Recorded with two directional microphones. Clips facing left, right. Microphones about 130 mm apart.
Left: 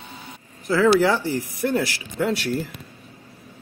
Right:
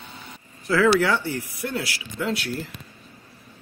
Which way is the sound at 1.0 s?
40° left (ahead or behind).